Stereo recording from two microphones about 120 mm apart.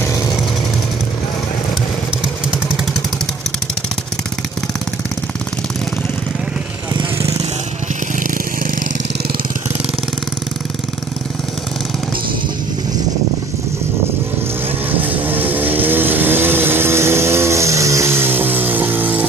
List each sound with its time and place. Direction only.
7.2 s vehicle: 25° right (ahead or behind)
14.9 s vehicle: 15° right (ahead or behind)